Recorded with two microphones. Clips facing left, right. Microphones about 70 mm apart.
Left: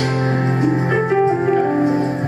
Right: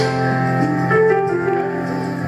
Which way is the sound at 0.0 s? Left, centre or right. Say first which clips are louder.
Right 1 dB; centre.